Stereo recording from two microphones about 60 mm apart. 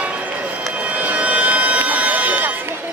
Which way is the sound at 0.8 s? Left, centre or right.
Right.